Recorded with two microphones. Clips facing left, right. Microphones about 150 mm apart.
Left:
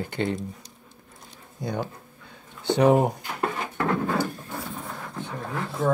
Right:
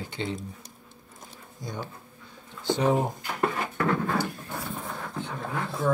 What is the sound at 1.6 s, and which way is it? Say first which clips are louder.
Speech: left 7 dB; 60° left (ahead or behind).